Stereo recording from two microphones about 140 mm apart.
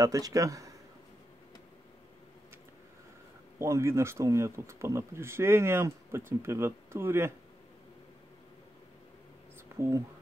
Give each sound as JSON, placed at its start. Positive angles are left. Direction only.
{"t": 0.0, "sound": "speech", "side_deg": -25}
{"t": 3.5, "sound": "speech", "side_deg": -20}
{"t": 9.8, "sound": "speech", "side_deg": -20}